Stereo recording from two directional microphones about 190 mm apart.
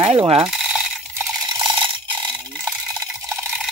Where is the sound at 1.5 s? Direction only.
25° right (ahead or behind).